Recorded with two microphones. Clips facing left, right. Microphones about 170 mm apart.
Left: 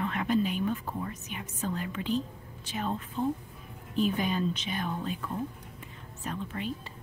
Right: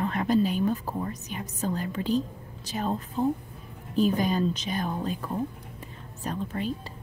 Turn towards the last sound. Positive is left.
turn(degrees=-35)  # may be behind; listen again after turning